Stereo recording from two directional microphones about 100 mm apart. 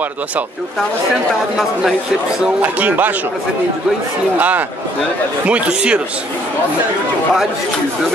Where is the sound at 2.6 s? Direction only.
15° right (ahead or behind).